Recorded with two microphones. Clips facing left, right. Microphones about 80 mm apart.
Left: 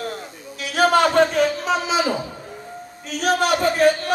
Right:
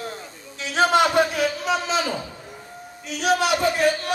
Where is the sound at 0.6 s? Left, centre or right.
Right.